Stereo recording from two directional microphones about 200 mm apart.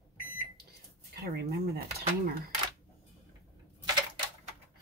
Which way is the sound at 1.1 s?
55° right (ahead or behind).